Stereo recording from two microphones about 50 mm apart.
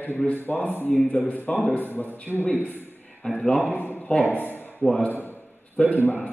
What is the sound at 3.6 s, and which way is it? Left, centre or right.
A man's voice, left.